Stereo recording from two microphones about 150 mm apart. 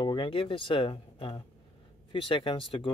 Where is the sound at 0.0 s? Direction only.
35° left (ahead or behind).